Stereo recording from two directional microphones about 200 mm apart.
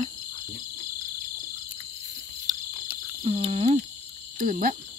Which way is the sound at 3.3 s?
30° right (ahead or behind).